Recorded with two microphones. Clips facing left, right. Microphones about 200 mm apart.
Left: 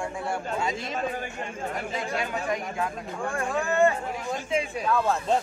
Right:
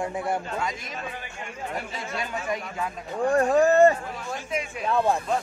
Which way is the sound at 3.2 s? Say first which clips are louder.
Right 9 dB; 40° right (ahead or behind).